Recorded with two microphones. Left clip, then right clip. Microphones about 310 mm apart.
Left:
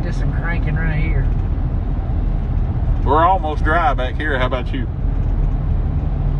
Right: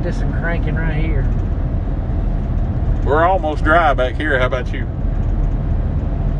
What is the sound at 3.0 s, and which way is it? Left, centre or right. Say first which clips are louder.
Speech: even; centre.